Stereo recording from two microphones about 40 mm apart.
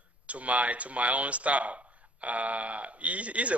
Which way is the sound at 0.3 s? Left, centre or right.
Right.